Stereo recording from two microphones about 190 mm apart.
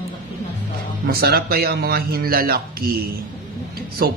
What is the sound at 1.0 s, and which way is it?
Speech, 55° right (ahead or behind).